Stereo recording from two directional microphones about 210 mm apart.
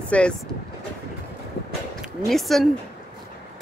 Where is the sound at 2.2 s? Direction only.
Centre (ahead or behind).